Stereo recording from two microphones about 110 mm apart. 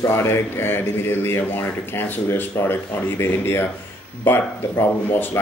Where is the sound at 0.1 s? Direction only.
20° left (ahead or behind).